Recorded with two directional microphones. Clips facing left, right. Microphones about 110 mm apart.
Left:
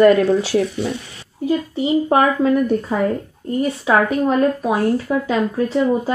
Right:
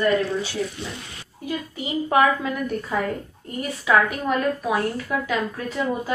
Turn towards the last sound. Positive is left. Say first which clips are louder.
# left 8 dB
turn(degrees=30)  # may be behind; listen again after turning